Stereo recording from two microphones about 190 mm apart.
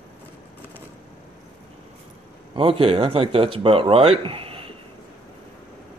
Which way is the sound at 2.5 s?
30° right (ahead or behind).